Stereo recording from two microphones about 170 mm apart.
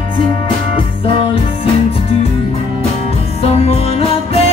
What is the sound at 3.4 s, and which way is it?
Music, 35° left (ahead or behind).